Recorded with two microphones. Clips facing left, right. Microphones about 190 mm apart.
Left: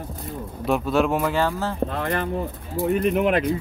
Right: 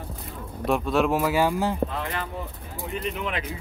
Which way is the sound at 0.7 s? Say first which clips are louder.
Left 2 dB; centre (ahead or behind).